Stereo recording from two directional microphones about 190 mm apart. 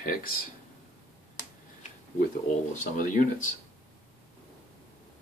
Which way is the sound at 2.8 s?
40° left (ahead or behind).